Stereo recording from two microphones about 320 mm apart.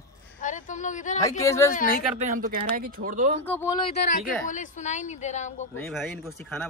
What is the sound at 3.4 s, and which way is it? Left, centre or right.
Speech, centre.